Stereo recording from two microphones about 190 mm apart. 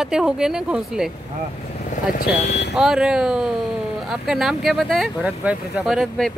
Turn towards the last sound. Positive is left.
turn(degrees=0)  # may be behind; listen again after turning